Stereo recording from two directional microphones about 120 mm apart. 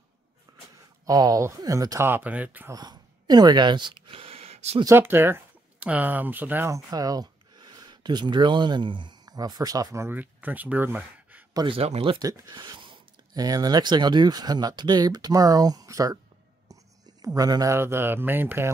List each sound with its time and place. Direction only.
0.5 s a sound: 35° right (ahead or behind)
1.0 s speech: 30° right (ahead or behind)
2.0 s speech: 15° right (ahead or behind)
2.7 s speech: 35° right (ahead or behind); by 4.7 s 60° right (ahead or behind)
4.8 s speech: 20° right (ahead or behind)
6.9 s speech: 30° right (ahead or behind)
10.0 s speech: 15° right (ahead or behind)
11.5 s speech: 45° right (ahead or behind)
12.2 s speech: 35° right (ahead or behind)
16.6 s whispering: 30° right (ahead or behind)
17.4 s speech: 30° right (ahead or behind)